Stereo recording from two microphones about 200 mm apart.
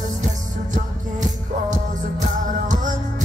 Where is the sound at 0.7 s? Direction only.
40° right (ahead or behind).